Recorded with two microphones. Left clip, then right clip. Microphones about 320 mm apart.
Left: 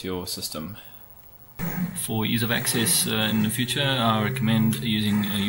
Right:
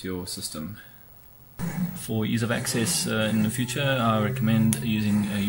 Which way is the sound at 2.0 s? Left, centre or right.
Centre.